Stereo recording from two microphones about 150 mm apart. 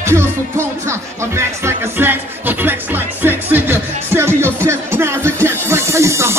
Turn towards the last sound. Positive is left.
turn(degrees=-20)  # may be behind; listen again after turning